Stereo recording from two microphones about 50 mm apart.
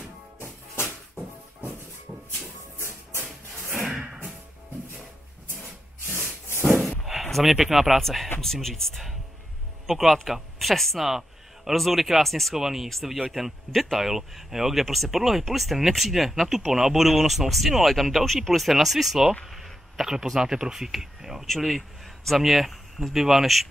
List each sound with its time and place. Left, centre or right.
3.7 s a sound: right
7.2 s speech: centre
10.3 s a sound: centre
11.7 s speech: centre
13.4 s speech: centre
19.4 s insect: centre
20.3 s speech: centre
21.5 s speech: centre